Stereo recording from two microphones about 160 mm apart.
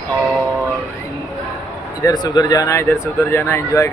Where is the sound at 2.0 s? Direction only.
25° left (ahead or behind).